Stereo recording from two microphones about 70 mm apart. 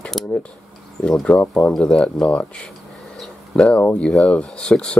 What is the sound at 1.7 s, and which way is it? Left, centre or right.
Speech, centre.